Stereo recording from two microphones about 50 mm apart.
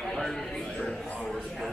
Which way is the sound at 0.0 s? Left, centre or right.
Centre.